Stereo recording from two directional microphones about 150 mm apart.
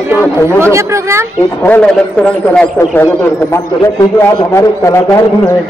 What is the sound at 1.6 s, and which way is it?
A man's voice, 10° left (ahead or behind).